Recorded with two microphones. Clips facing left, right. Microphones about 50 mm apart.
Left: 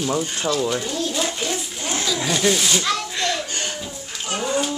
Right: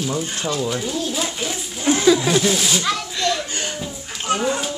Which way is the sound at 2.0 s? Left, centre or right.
Right.